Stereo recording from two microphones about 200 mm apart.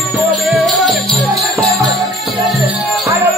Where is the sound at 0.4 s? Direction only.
Centre (ahead or behind).